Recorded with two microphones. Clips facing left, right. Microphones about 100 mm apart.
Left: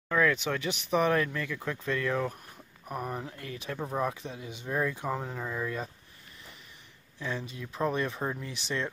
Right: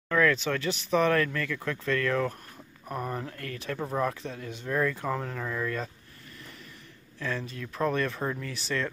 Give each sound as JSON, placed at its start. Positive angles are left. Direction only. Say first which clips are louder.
{"t": 0.1, "sound": "speech", "louder": "right 2 dB", "side_deg": 15}
{"t": 7.2, "sound": "speech", "louder": "right 2 dB", "side_deg": 20}